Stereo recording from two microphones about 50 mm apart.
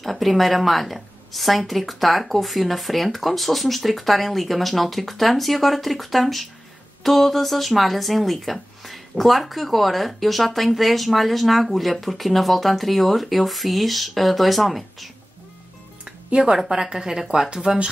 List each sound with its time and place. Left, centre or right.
0.0 s speech: centre
16.3 s speech: right
16.5 s speech: centre